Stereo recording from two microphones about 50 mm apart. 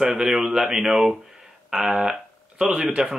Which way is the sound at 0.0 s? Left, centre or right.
Centre.